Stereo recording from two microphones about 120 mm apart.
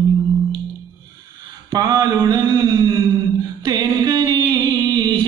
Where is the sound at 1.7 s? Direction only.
30° right (ahead or behind).